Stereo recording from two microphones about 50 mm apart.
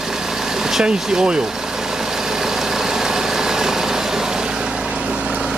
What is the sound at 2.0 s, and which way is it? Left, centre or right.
Vehicle, centre.